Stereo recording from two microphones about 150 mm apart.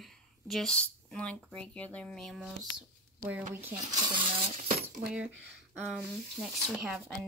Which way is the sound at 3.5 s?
15° right (ahead or behind).